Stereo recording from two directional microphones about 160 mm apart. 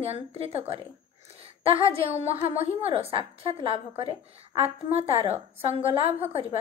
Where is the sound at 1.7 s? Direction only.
40° right (ahead or behind).